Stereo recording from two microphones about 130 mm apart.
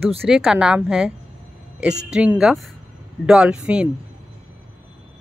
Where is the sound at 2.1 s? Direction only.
10° right (ahead or behind).